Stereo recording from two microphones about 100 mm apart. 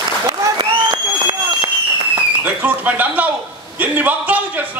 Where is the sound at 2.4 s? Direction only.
15° right (ahead or behind).